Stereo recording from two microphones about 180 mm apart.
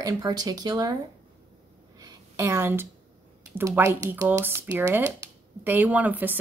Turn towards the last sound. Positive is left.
turn(degrees=-10)  # may be behind; listen again after turning